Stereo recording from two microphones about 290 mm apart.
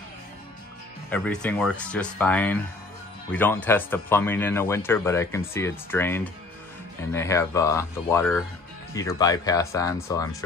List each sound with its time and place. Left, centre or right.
1.1 s speech: centre